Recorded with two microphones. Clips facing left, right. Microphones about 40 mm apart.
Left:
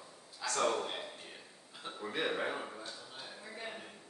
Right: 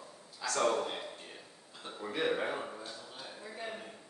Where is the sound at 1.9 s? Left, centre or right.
Centre.